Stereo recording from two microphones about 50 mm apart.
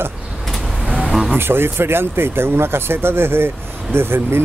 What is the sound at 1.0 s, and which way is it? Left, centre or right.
Vehicle, centre.